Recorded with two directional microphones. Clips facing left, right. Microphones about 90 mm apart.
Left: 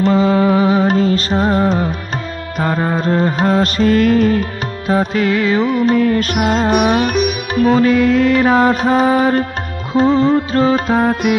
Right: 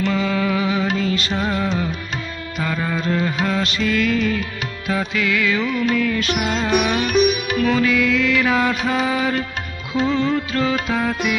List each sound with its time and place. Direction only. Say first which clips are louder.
0.0 s music: left 8 dB; 35° left (ahead or behind)